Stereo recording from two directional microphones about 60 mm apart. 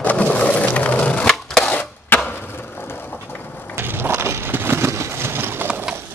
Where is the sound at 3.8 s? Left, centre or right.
Right.